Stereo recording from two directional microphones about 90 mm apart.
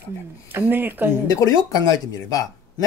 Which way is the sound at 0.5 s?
20° right (ahead or behind).